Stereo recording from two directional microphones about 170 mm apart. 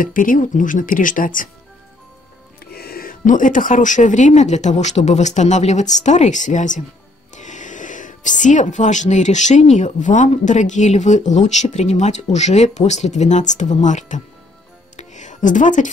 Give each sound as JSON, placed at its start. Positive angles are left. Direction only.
{"t": 0.0, "sound": "speech", "side_deg": 55}
{"t": 2.6, "sound": "speech", "side_deg": 65}
{"t": 15.0, "sound": "music", "side_deg": 45}